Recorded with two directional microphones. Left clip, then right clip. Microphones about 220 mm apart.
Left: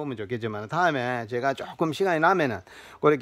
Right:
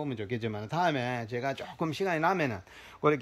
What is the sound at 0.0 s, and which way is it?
Speech, 15° left (ahead or behind).